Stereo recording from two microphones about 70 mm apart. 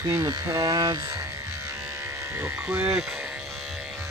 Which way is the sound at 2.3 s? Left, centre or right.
Right.